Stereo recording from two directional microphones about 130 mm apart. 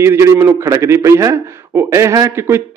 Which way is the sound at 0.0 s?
20° right (ahead or behind).